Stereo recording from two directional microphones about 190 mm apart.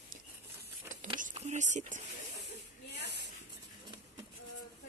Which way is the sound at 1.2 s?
35° right (ahead or behind).